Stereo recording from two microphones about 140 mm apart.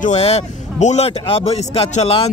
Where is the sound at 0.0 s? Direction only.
50° left (ahead or behind).